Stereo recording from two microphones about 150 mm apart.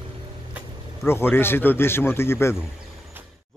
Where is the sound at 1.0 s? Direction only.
15° left (ahead or behind).